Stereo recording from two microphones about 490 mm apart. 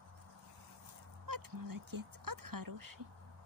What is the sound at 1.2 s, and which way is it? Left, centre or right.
Speech, right.